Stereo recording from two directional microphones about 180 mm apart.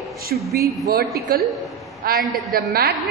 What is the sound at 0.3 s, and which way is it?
A woman's voice, 55° right (ahead or behind).